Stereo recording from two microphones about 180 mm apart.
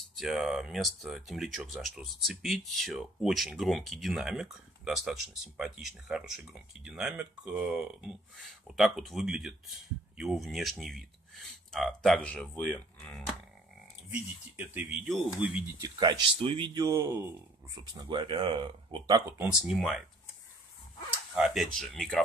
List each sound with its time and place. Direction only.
0.1 s speech: centre (ahead or behind)
14.1 s speech: 10° right (ahead or behind)
15.8 s speech: 25° right (ahead or behind)
17.9 s speech: 25° right (ahead or behind)
19.6 s speech: centre (ahead or behind)
21.4 s speech: centre (ahead or behind)